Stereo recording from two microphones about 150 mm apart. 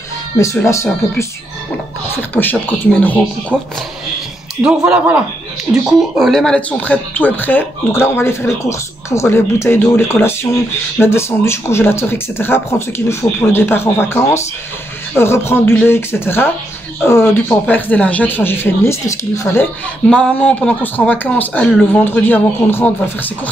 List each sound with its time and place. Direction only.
2.0 s speech: 15° left (ahead or behind)
3.5 s speech: 10° right (ahead or behind); by 23.5 s 10° left (ahead or behind)